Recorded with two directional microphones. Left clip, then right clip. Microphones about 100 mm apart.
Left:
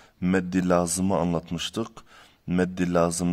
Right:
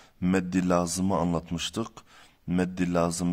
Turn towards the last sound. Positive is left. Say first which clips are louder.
# left 3 dB
turn(degrees=25)  # may be behind; listen again after turning